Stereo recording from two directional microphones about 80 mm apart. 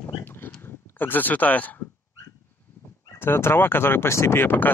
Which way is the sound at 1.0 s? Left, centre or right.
Left.